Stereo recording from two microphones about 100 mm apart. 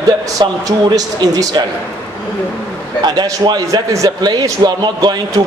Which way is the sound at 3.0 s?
45° right (ahead or behind).